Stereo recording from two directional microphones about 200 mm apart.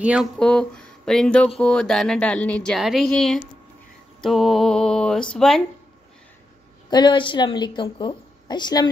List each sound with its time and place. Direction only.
0.0 s speech: 5° right (ahead or behind)
6.9 s a woman's voice: 25° left (ahead or behind)